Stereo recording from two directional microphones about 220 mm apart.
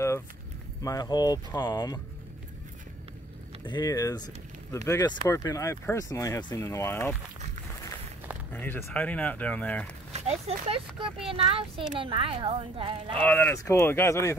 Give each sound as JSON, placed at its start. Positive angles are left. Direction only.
{"t": 0.8, "sound": "speech", "side_deg": 15}
{"t": 3.6, "sound": "speech", "side_deg": 20}
{"t": 8.5, "sound": "speech", "side_deg": 10}
{"t": 10.1, "sound": "speech", "side_deg": -30}
{"t": 13.2, "sound": "speech", "side_deg": 10}